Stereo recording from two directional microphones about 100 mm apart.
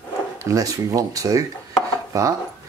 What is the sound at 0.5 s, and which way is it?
Speech, 35° right (ahead or behind).